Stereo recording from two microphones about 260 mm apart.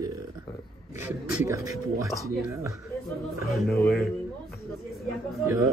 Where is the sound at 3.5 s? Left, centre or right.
Centre.